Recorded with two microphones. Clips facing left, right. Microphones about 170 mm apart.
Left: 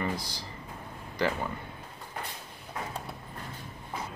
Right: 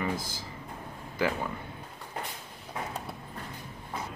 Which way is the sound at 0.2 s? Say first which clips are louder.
Right 1 dB; 50° right (ahead or behind).